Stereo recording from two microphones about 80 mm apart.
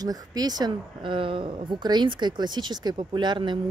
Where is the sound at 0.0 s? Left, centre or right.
Right.